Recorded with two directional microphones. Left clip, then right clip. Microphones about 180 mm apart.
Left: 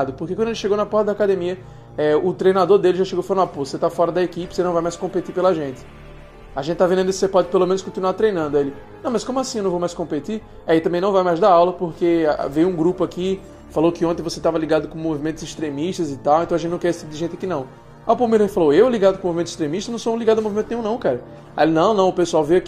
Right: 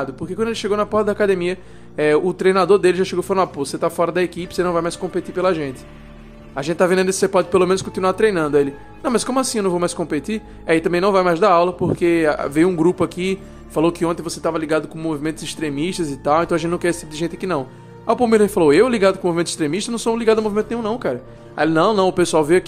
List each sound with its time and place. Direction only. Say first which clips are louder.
0.0 s speech: left 1 dB; 10° right (ahead or behind)
21.8 s speech: even; 20° right (ahead or behind)